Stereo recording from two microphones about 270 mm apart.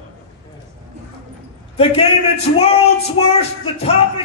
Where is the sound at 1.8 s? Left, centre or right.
Left.